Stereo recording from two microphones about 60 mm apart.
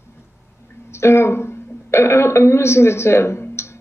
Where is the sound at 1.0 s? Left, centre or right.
Left.